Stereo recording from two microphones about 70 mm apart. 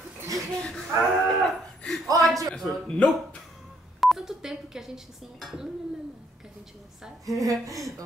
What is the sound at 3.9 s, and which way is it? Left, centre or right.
Speech, centre.